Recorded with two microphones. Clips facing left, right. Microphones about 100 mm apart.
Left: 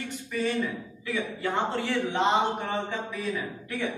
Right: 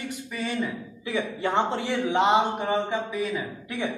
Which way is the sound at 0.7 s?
20° right (ahead or behind).